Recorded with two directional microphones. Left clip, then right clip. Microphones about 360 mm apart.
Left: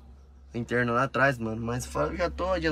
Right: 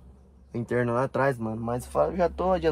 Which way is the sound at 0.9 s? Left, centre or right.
Centre.